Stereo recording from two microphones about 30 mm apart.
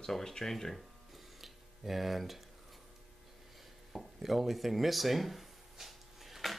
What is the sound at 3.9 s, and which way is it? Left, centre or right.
Speech, centre.